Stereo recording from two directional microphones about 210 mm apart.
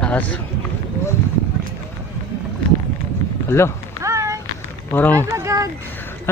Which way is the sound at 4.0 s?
15° right (ahead or behind).